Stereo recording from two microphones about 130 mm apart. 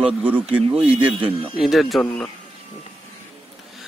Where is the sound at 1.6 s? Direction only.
Centre (ahead or behind).